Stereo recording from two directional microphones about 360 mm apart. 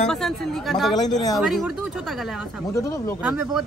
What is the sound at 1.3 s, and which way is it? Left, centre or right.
Speech, centre.